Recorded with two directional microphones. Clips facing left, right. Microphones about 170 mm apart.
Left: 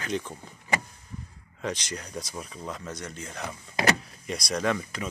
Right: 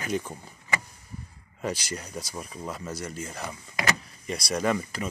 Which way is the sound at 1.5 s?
5° right (ahead or behind).